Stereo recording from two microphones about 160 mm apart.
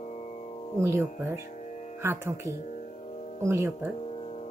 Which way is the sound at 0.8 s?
15° right (ahead or behind).